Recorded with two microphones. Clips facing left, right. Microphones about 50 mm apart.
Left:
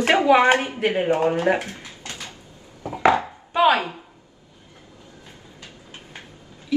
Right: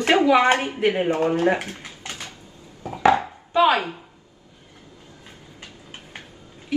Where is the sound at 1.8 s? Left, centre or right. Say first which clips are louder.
Right 1 dB; right.